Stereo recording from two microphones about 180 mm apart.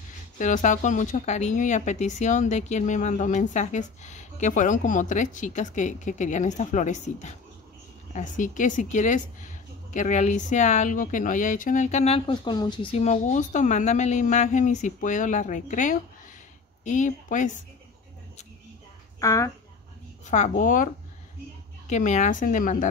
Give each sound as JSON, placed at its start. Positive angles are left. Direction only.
{"t": 0.4, "sound": "speech", "side_deg": 45}
{"t": 19.1, "sound": "speech", "side_deg": 15}
{"t": 20.2, "sound": "speech", "side_deg": 40}